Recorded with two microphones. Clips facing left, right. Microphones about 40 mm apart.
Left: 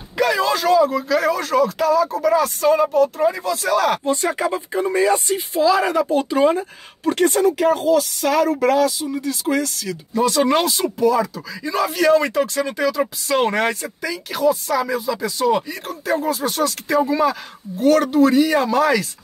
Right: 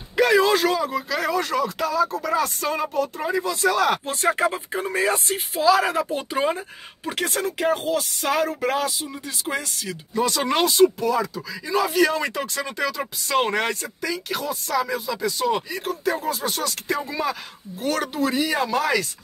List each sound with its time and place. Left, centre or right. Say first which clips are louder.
0.2 s speech: right 1 dB; centre
5.0 s speech: left 5 dB; centre
6.1 s speech: left 7 dB; centre